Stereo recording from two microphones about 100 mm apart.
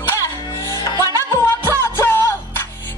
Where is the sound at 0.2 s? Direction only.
30° left (ahead or behind).